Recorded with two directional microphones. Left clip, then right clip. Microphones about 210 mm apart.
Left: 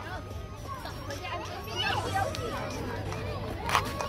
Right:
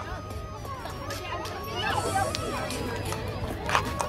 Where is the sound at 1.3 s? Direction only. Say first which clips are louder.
Right 1 dB; 45° left (ahead or behind).